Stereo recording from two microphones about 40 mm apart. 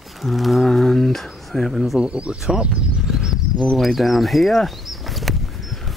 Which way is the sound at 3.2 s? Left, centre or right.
Centre.